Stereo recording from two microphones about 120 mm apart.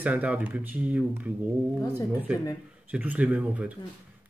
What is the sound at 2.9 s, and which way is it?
Speech, 10° right (ahead or behind).